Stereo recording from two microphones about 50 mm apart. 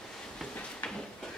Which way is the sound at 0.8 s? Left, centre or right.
Left.